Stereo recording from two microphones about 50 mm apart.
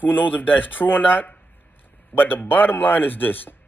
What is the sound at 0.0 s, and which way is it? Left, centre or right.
Speech, left.